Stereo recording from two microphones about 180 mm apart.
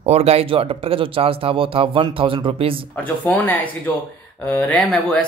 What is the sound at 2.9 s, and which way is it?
Speech, 10° left (ahead or behind).